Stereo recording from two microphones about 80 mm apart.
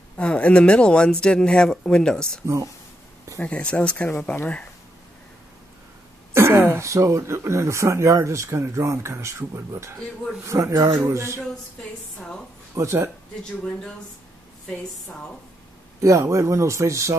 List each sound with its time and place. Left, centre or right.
0.2 s speech: centre
2.4 s speech: right
3.4 s speech: centre
6.3 s throat clearing: right
6.7 s speech: right
12.2 s speech: centre
12.7 s speech: right
13.4 s speech: centre
16.0 s speech: right